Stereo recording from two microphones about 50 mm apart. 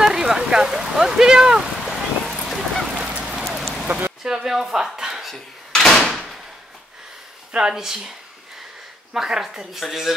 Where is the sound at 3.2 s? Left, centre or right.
Centre.